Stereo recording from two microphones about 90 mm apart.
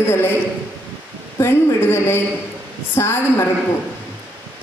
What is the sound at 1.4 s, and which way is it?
A woman's voice, 25° left (ahead or behind).